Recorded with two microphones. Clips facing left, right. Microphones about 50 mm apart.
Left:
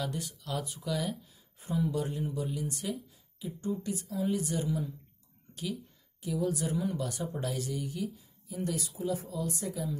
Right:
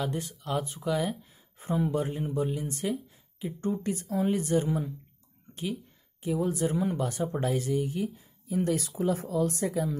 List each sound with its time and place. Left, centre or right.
0.0 s speech: right
5.5 s speech: right
8.5 s speech: right